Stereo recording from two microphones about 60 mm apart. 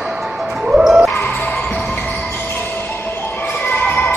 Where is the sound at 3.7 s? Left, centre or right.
Left.